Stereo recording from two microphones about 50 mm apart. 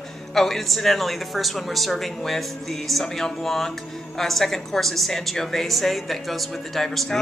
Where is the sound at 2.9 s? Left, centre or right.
Centre.